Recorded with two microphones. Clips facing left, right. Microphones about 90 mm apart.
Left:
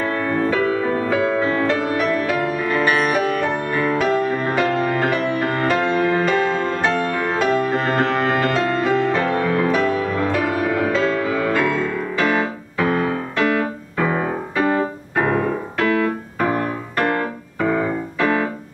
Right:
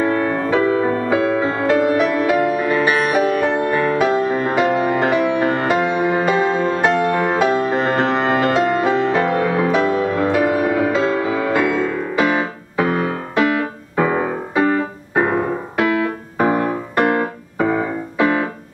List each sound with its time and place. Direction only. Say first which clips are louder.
0.0 s music: right 2 dB; 25° right (ahead or behind)